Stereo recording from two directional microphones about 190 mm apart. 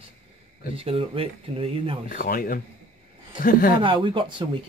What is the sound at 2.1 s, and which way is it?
Speech, 50° left (ahead or behind).